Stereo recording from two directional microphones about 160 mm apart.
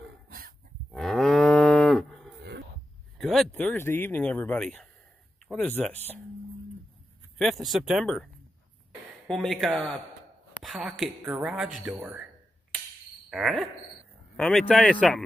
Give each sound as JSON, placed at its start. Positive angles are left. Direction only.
{"t": 0.3, "sound": "dog", "side_deg": -60}
{"t": 0.9, "sound": "moo", "side_deg": 0}
{"t": 3.2, "sound": "speech", "side_deg": 0}
{"t": 7.3, "sound": "speech", "side_deg": 0}
{"t": 9.3, "sound": "speech", "side_deg": 0}
{"t": 13.3, "sound": "speech", "side_deg": 0}